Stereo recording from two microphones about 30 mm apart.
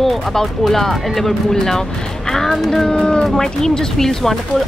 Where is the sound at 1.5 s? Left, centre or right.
Centre.